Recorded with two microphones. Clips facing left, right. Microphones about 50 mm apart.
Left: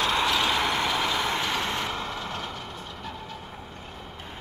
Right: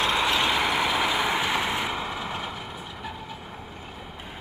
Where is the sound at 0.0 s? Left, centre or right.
Centre.